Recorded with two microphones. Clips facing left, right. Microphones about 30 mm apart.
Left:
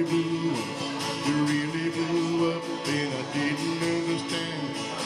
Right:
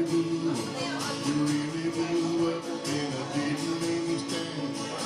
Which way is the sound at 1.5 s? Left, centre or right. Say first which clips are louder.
Left 2 dB; left.